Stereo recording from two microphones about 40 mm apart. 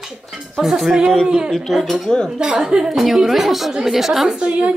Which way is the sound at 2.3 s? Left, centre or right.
Centre.